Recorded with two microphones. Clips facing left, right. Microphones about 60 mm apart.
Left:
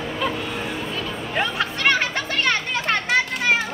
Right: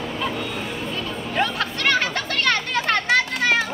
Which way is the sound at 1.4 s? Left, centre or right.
Left.